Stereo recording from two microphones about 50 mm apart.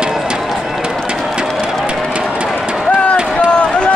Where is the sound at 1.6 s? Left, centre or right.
Centre.